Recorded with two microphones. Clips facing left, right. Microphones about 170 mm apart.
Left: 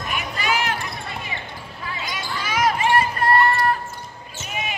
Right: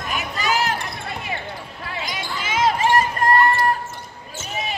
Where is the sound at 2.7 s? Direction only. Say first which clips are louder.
Right 1 dB; 40° right (ahead or behind).